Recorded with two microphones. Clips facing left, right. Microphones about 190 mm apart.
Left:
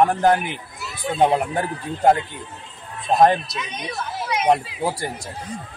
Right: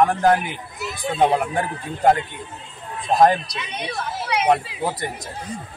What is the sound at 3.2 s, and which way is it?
Speech, 25° left (ahead or behind).